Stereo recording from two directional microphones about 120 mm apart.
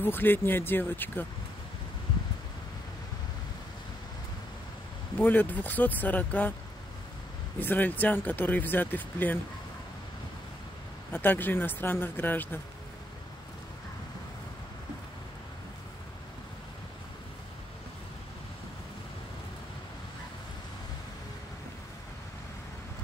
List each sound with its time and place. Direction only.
0.0 s speech: 15° left (ahead or behind)
5.2 s speech: 15° left (ahead or behind)
7.6 s speech: 15° left (ahead or behind)
11.1 s speech: 15° left (ahead or behind)